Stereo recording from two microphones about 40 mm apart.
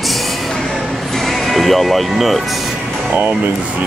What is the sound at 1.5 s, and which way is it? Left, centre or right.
Speech, centre.